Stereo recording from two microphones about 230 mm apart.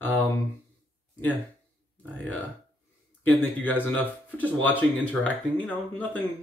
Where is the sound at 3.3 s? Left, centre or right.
Centre.